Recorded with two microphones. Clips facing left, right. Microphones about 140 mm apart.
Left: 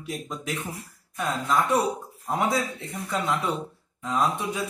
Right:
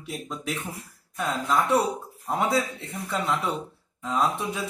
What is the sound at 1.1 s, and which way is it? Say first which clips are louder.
A man's voice: even; centre (ahead or behind).